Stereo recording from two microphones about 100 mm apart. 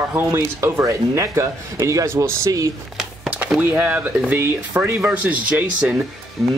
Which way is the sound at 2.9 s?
10° right (ahead or behind).